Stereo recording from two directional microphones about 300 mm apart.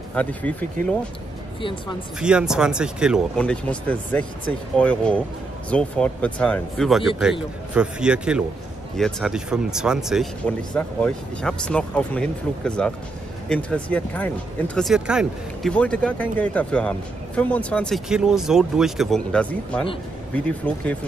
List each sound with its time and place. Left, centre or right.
0.1 s speech: centre
1.6 s speech: centre
2.1 s speech: centre